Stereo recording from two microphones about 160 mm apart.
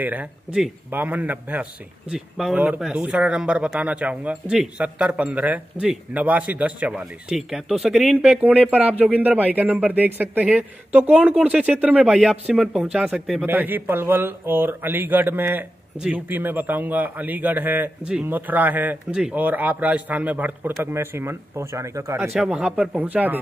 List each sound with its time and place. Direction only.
0.0 s speech: 10° right (ahead or behind)
22.3 s speech: 5° right (ahead or behind)